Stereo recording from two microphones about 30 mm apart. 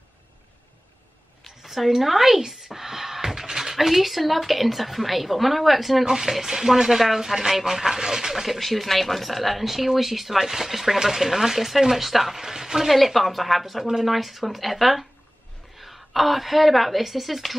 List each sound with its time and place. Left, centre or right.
1.6 s speech: centre
6.0 s speech: centre
8.5 s speech: centre
12.4 s a woman's voice: centre
12.8 s speech: centre